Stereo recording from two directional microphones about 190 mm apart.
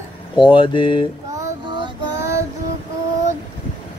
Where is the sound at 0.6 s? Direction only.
25° left (ahead or behind).